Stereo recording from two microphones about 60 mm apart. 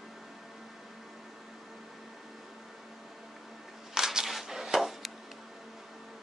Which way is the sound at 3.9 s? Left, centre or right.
Centre.